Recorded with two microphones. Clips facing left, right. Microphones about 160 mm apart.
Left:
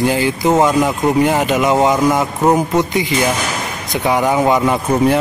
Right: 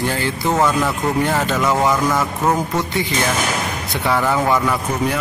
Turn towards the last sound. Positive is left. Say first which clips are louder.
# left 6 dB
turn(degrees=20)  # may be behind; listen again after turning